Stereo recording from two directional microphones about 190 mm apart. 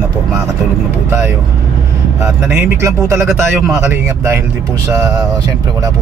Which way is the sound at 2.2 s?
10° right (ahead or behind).